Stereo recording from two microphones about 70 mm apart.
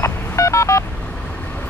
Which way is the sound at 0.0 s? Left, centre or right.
Left.